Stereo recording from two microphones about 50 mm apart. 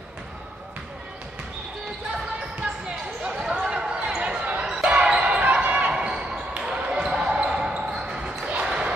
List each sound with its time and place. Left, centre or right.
3.4 s basketball bounce: centre; by 5.9 s right
5.9 s basketball bounce: centre